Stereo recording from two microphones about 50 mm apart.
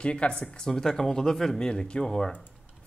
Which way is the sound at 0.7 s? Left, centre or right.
Centre.